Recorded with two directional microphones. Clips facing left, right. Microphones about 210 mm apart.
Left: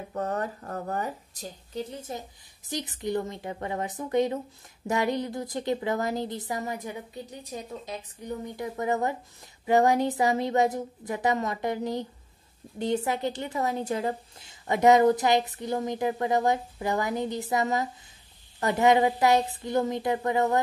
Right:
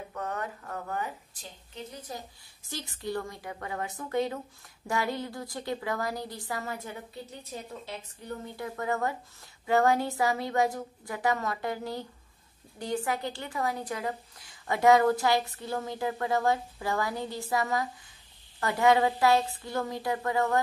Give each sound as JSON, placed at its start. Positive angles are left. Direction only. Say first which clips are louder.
{"t": 0.1, "sound": "a woman's voice", "louder": "left 6 dB", "side_deg": 35}